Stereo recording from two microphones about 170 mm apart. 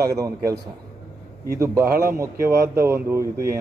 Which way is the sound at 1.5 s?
20° right (ahead or behind).